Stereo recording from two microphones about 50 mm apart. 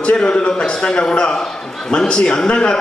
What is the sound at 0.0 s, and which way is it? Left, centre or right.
A man's voice, centre.